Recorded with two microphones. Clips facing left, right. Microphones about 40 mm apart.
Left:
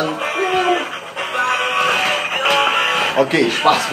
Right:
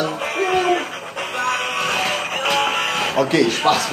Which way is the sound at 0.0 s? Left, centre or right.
Centre.